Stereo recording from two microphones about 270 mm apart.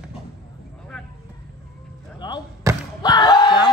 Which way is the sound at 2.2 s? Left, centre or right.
Centre.